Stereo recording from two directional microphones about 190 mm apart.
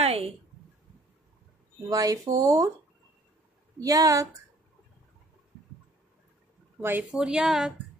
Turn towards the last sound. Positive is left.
turn(degrees=-5)  # may be behind; listen again after turning